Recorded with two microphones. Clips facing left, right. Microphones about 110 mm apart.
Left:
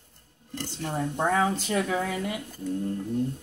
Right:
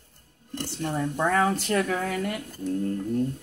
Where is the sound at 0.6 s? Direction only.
15° left (ahead or behind).